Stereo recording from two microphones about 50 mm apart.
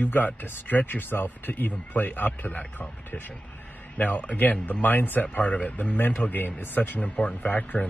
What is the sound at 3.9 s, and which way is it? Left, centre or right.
Speech, left.